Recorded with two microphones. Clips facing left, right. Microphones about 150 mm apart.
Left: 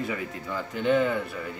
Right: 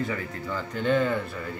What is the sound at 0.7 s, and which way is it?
Speech, 5° left (ahead or behind).